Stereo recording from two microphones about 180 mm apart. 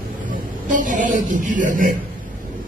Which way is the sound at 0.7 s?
45° right (ahead or behind).